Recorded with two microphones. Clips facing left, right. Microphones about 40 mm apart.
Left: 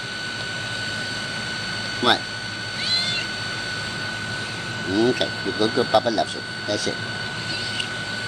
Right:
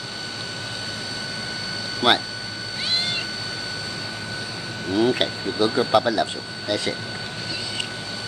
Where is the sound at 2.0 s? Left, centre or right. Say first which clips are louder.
Right 1 dB; right.